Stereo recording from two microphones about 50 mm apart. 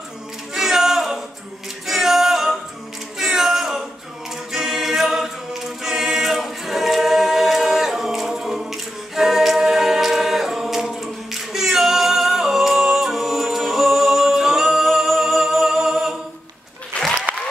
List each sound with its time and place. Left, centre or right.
0.6 s a capella: centre
1.9 s music: centre
3.2 s a capella: centre
4.5 s choir: centre
11.5 s a capella: centre
17.0 s applause: left